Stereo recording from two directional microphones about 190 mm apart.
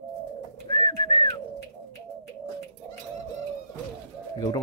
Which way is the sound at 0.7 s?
20° left (ahead or behind).